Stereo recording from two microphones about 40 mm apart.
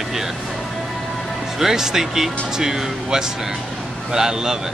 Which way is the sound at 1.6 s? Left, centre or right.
Centre.